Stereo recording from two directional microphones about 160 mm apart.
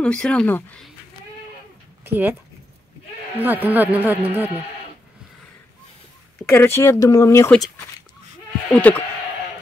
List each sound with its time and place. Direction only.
0.0 s speech: 5° left (ahead or behind)
2.0 s speech: 10° right (ahead or behind)
3.6 s speech: 10° right (ahead or behind)
6.5 s speech: 15° left (ahead or behind)
8.7 s speech: 10° left (ahead or behind)